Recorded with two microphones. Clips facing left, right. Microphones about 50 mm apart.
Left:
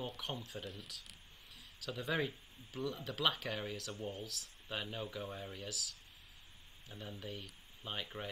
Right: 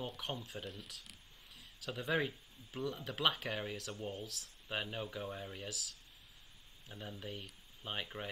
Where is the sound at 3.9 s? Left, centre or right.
Right.